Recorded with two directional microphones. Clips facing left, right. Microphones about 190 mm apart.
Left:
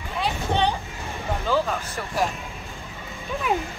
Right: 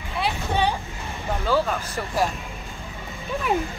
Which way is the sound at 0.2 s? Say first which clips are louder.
Even; 10° right (ahead or behind).